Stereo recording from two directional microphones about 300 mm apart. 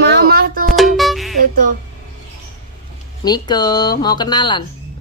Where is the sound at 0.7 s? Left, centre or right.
Centre.